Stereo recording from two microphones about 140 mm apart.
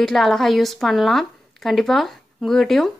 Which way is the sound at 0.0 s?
Centre (ahead or behind).